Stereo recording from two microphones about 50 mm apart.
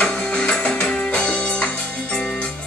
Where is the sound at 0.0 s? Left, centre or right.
Centre.